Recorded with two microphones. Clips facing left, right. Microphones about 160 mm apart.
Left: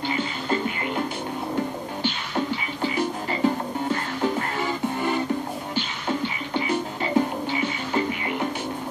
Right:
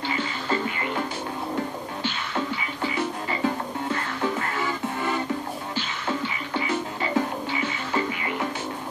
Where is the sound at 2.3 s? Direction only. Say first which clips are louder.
Left 2 dB; 30° left (ahead or behind).